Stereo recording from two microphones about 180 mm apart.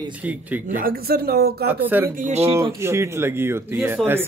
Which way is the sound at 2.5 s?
15° right (ahead or behind).